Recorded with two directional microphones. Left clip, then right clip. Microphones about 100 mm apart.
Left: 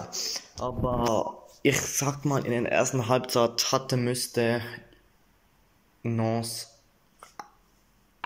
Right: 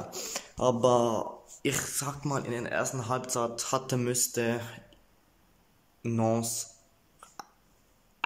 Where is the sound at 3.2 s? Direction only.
5° right (ahead or behind).